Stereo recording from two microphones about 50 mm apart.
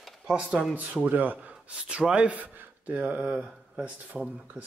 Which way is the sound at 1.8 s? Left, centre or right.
Right.